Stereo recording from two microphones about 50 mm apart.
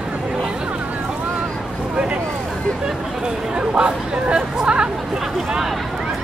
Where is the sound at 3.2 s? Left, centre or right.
Centre.